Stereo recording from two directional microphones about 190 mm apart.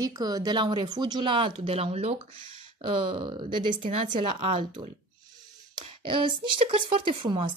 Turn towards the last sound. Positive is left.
turn(degrees=-25)  # may be behind; listen again after turning